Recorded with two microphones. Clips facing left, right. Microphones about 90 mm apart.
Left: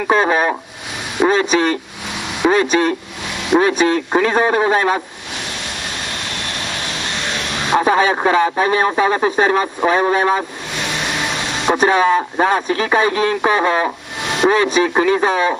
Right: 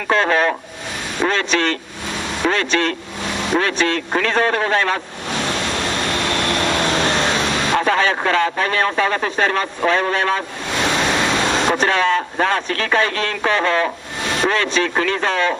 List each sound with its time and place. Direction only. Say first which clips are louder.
0.1 s speech: left 1 dB; 15° left (ahead or behind)
5.8 s vehicle: right 6 dB; 90° right
7.7 s speech: left 5 dB; 15° left (ahead or behind)
11.2 s a sound: right 4 dB; 90° right
11.7 s speech: left 8 dB; 15° left (ahead or behind)